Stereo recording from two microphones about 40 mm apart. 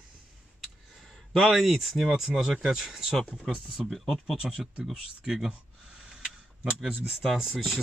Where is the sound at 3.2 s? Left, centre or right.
Centre.